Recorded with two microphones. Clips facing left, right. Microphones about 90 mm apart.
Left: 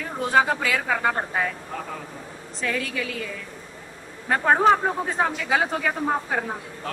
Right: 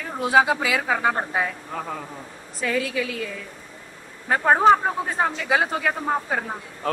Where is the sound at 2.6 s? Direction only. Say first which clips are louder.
Right 3 dB; 5° right (ahead or behind).